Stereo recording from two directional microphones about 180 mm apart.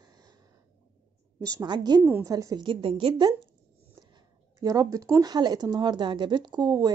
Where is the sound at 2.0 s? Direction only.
15° right (ahead or behind); by 3.3 s 30° right (ahead or behind).